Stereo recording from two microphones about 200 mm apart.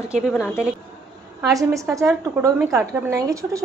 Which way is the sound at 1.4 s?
15° right (ahead or behind).